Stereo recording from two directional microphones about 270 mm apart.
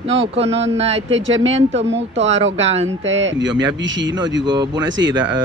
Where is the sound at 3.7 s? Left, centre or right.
Right.